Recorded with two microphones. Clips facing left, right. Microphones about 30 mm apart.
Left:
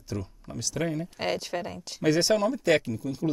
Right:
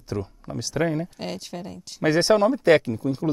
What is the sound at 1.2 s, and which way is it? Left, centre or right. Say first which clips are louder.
Speech: left 3 dB; centre.